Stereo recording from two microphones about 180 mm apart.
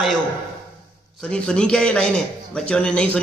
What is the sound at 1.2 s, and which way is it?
A man's voice, 5° left (ahead or behind).